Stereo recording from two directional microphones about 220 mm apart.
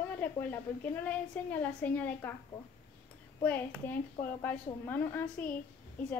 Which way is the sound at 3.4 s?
10° left (ahead or behind).